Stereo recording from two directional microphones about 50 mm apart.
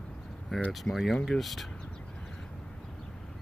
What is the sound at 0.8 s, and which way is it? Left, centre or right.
Speech, centre.